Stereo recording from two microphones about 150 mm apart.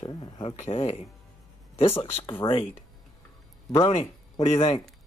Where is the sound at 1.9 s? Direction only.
40° left (ahead or behind).